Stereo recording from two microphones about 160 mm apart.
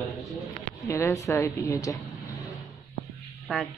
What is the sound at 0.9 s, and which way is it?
A woman's voice, 20° left (ahead or behind).